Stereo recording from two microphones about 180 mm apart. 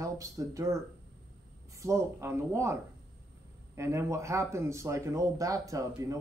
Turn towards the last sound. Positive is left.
turn(degrees=-20)  # may be behind; listen again after turning